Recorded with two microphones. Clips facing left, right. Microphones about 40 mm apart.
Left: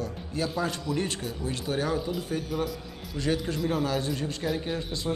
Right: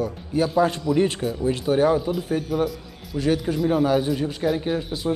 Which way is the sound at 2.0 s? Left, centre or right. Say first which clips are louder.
Right 6 dB; centre.